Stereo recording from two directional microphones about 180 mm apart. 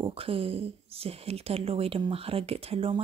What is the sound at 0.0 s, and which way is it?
Speech, 30° right (ahead or behind).